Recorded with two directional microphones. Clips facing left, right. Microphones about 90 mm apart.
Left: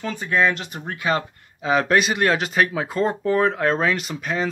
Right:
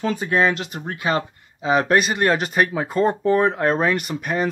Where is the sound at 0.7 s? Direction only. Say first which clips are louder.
Right 1 dB; 30° right (ahead or behind).